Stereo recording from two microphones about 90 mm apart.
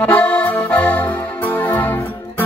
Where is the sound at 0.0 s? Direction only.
15° left (ahead or behind).